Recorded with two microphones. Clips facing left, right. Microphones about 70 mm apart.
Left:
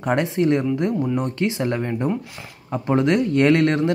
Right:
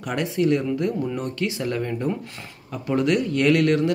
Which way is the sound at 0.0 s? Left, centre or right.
Left.